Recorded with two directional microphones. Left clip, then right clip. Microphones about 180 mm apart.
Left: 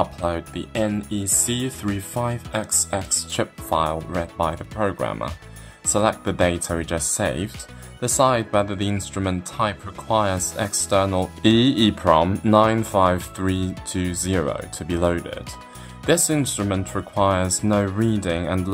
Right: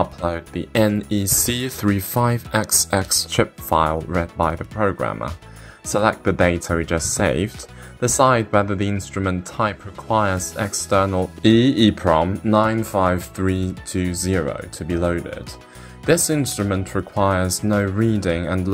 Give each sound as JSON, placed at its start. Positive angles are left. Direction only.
{"t": 0.0, "sound": "speech", "side_deg": -15}
{"t": 4.6, "sound": "speech", "side_deg": -5}
{"t": 18.2, "sound": "speech", "side_deg": -15}